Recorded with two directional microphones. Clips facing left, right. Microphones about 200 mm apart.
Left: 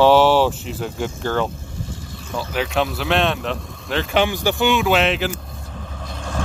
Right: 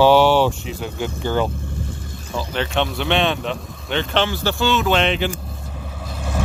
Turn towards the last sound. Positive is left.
turn(degrees=-5)  # may be behind; listen again after turning